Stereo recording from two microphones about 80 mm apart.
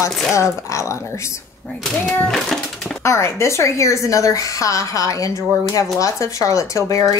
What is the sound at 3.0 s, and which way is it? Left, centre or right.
A woman's voice, left.